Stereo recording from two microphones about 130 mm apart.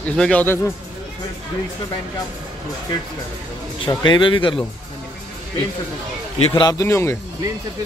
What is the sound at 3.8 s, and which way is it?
Speech, 35° left (ahead or behind).